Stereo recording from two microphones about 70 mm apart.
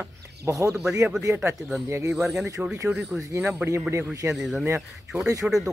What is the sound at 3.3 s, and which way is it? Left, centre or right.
Speech, right.